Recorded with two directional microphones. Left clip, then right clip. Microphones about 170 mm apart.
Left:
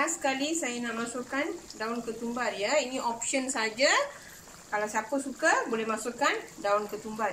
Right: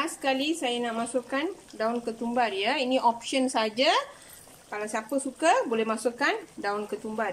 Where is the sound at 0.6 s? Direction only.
65° right (ahead or behind).